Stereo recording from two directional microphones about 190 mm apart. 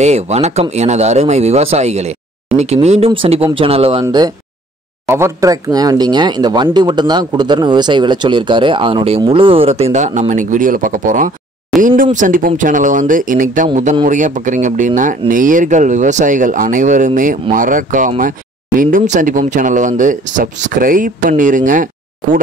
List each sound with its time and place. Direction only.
0.0 s speech: 35° right (ahead or behind)